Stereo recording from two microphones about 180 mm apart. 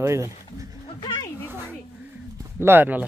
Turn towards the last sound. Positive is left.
turn(degrees=-10)  # may be behind; listen again after turning